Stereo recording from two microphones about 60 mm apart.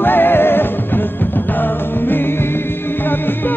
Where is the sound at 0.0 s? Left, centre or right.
Left.